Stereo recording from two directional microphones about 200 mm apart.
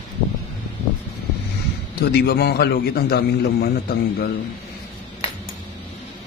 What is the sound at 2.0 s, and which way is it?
A man's voice, 55° left (ahead or behind).